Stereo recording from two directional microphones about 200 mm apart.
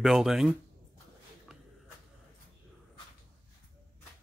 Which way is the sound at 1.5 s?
5° right (ahead or behind).